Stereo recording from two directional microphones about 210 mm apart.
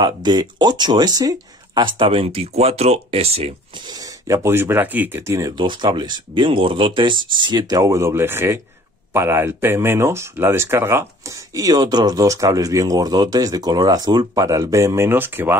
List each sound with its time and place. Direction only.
0.0 s speech: 20° right (ahead or behind)